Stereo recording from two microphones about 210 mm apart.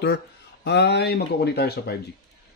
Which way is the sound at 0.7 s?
55° left (ahead or behind).